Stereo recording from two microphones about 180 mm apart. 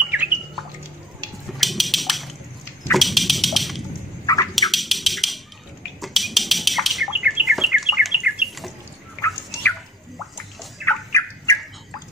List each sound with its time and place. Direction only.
0.1 s bird: 10° right (ahead or behind)
1.6 s a sound: centre (ahead or behind)
4.6 s music: centre (ahead or behind)
5.9 s bird: centre (ahead or behind)
9.2 s a sound: 5° left (ahead or behind)
11.1 s fowl: 15° left (ahead or behind)